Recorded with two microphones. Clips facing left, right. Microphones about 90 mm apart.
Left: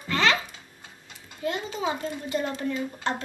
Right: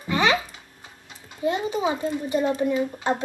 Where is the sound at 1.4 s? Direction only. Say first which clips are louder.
Right 5 dB; 20° right (ahead or behind).